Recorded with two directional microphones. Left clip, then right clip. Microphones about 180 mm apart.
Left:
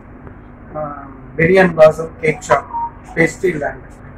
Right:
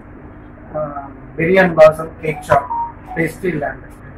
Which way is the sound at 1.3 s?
Centre (ahead or behind).